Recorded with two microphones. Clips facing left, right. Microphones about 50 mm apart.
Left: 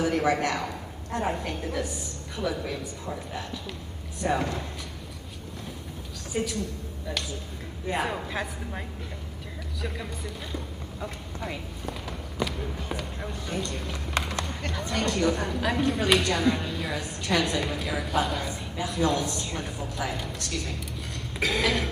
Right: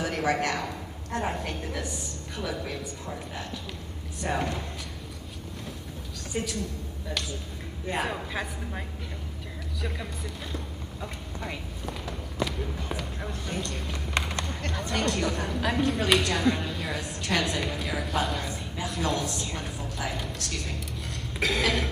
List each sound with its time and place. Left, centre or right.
0.2 s a woman's voice: centre
4.2 s a woman's voice: centre
6.3 s a woman's voice: centre
7.8 s a woman's voice: centre
13.5 s speech: left
13.7 s speech: centre
14.4 s a sound: centre
15.2 s a woman's voice: centre